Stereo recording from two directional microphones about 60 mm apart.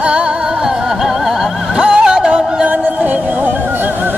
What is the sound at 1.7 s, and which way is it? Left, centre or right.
Music, centre.